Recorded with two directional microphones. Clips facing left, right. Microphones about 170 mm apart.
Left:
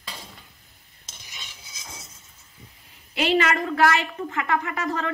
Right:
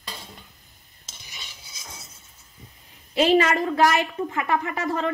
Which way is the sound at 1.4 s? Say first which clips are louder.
Even; 20° left (ahead or behind).